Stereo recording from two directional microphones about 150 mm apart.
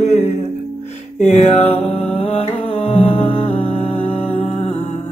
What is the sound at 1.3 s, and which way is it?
Music, 45° left (ahead or behind).